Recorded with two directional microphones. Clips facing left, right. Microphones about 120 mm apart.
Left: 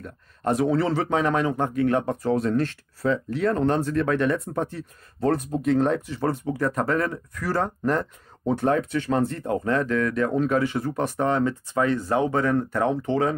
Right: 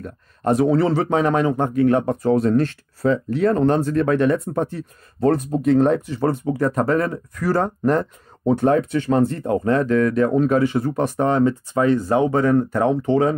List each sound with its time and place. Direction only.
0.0 s a sound: 45° right (ahead or behind)
0.7 s speech: 35° right (ahead or behind)
5.2 s speech: 45° right (ahead or behind); by 13.3 s 25° right (ahead or behind)